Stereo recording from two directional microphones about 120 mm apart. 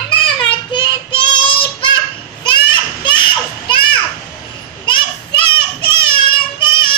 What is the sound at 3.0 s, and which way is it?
Children playing, 40° left (ahead or behind).